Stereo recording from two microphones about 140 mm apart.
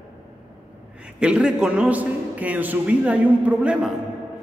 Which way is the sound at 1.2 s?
5° right (ahead or behind).